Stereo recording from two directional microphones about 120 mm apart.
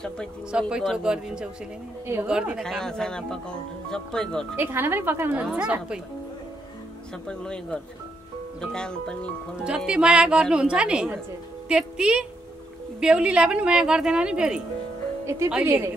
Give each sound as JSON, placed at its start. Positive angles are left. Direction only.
{"t": 0.5, "sound": "a woman's voice", "side_deg": -5}
{"t": 2.6, "sound": "speech", "side_deg": 5}
{"t": 4.6, "sound": "a woman's voice", "side_deg": -20}
{"t": 7.2, "sound": "speech", "side_deg": 5}
{"t": 9.6, "sound": "a woman's voice", "side_deg": -5}
{"t": 15.2, "sound": "a woman's voice", "side_deg": -25}